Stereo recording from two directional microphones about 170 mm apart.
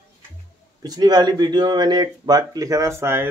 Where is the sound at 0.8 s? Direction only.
25° right (ahead or behind).